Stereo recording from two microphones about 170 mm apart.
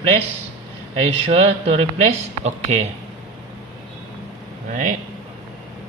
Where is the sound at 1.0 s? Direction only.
35° right (ahead or behind).